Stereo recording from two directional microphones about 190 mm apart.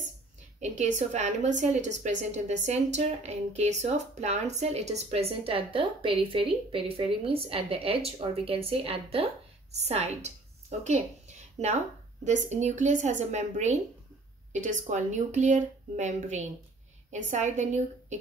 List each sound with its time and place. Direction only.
0.6 s a woman's voice: 40° right (ahead or behind)